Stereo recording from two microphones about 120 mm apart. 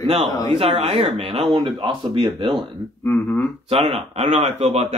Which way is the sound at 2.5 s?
Centre (ahead or behind).